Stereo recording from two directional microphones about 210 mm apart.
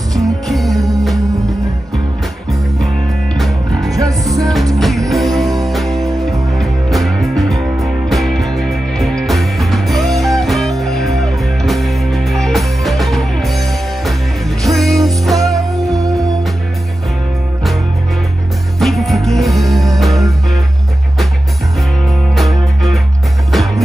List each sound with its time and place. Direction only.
0.1 s music: centre (ahead or behind)
3.3 s music: centre (ahead or behind)
18.8 s music: centre (ahead or behind)
22.3 s music: centre (ahead or behind)